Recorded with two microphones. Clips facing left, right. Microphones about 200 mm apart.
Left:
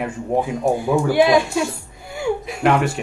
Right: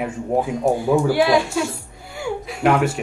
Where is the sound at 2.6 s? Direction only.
5° right (ahead or behind).